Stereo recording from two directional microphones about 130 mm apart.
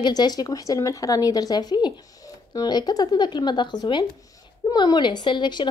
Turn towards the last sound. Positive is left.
turn(degrees=35)  # may be behind; listen again after turning